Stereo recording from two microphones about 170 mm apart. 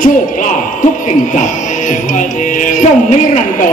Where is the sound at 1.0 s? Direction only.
45° left (ahead or behind).